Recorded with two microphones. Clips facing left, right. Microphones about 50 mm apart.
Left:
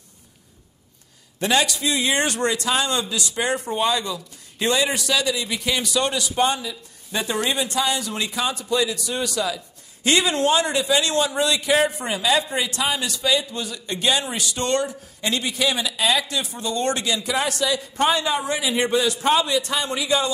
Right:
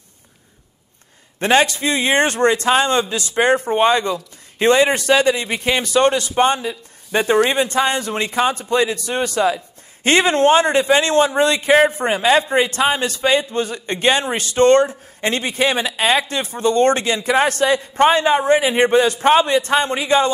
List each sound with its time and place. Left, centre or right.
1.4 s a man's voice: right